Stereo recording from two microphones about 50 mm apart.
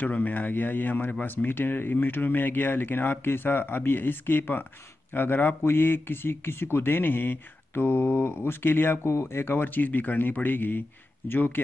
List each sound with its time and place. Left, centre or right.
0.0 s speech: left
9.1 s speech: left